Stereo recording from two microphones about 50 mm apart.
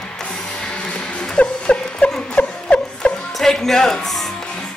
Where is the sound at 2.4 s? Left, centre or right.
Left.